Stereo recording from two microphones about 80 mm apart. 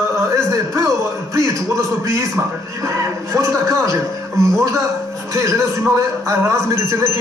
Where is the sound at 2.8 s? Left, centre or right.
Right.